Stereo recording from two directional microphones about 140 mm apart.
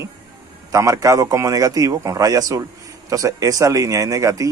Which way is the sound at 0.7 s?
25° right (ahead or behind).